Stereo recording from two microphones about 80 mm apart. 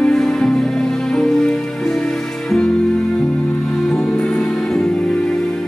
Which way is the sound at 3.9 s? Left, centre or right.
Centre.